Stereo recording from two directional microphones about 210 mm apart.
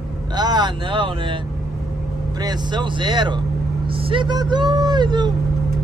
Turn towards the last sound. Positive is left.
turn(degrees=-20)  # may be behind; listen again after turning